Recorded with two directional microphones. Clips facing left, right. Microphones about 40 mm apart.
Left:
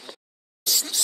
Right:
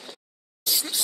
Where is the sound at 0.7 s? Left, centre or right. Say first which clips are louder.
Left 1 dB; centre.